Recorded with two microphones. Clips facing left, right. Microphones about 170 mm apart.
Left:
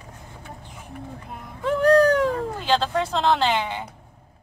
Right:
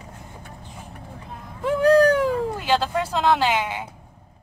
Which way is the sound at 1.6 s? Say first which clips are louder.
Right 1 dB; 5° right (ahead or behind).